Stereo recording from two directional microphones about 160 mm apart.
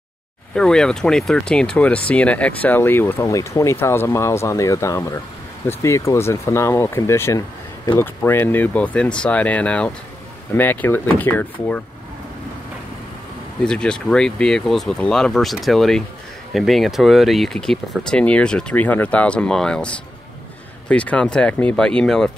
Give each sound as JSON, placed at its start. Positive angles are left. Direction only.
{"t": 0.6, "sound": "speech", "side_deg": 5}
{"t": 13.6, "sound": "speech", "side_deg": 5}